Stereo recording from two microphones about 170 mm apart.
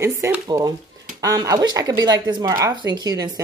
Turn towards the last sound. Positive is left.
turn(degrees=-20)  # may be behind; listen again after turning